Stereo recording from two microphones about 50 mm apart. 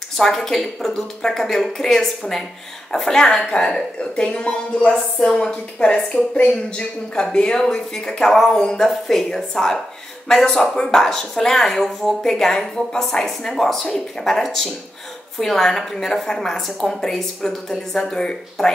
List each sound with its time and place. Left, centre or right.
0.2 s speech: centre